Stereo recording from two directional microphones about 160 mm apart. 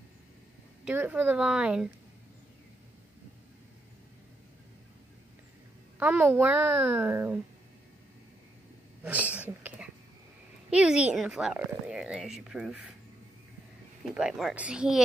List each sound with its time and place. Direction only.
0.8 s a woman's voice: 10° right (ahead or behind)
5.9 s a woman's voice: 10° right (ahead or behind)
9.0 s a sound: 10° right (ahead or behind)
10.7 s a woman's voice: 5° right (ahead or behind)
14.1 s a woman's voice: 5° right (ahead or behind)